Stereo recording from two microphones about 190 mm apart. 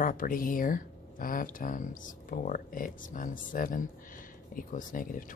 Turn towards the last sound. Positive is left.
turn(degrees=45)  # may be behind; listen again after turning